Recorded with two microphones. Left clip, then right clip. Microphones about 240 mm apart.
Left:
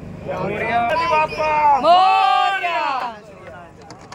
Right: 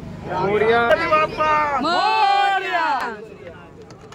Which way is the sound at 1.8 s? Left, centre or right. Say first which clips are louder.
Left 7 dB; centre.